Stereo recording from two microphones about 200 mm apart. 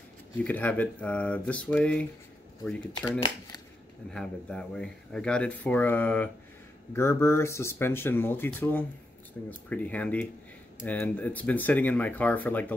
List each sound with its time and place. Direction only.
0.4 s speech: 10° left (ahead or behind)
3.1 s speech: 25° left (ahead or behind)
4.1 s speech: 5° left (ahead or behind)